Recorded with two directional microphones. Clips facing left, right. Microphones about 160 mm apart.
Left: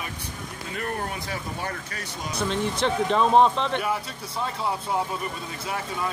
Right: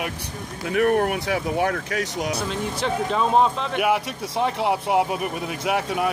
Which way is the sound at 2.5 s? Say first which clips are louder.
Even; 5° right (ahead or behind).